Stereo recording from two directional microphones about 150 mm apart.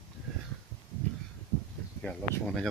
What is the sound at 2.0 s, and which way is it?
Speech, centre (ahead or behind).